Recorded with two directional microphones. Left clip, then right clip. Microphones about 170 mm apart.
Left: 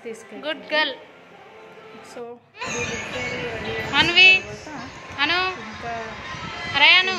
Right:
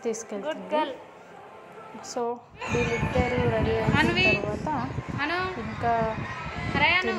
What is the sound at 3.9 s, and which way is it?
A woman's voice, 5° right (ahead or behind).